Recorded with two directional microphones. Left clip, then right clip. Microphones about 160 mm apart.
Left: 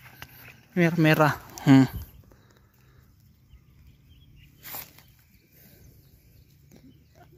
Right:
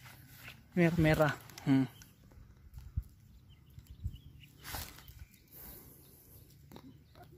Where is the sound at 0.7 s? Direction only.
30° left (ahead or behind).